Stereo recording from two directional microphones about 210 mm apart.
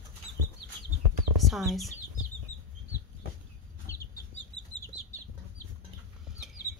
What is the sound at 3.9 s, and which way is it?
Chicken, 15° left (ahead or behind).